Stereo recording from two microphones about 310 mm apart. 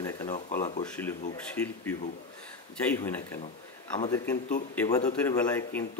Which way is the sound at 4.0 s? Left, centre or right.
Centre.